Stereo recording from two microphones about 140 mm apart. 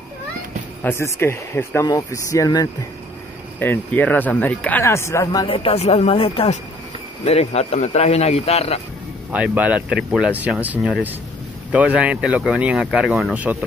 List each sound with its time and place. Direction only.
0.8 s speech: 20° left (ahead or behind)
3.5 s speech: 15° left (ahead or behind)
5.5 s speech: 40° left (ahead or behind)
9.3 s speech: 10° right (ahead or behind)